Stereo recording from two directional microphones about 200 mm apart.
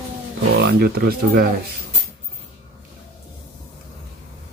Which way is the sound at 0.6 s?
50° right (ahead or behind).